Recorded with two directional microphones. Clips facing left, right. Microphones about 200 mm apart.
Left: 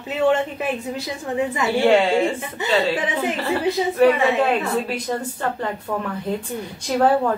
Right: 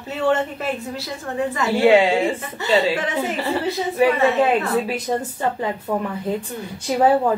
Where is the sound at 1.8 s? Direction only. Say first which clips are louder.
Right 2 dB; 5° right (ahead or behind).